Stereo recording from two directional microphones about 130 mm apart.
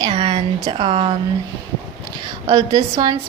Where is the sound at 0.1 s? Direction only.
45° right (ahead or behind).